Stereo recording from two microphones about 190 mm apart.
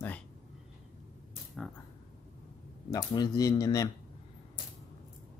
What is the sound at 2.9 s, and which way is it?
Speech, 20° left (ahead or behind).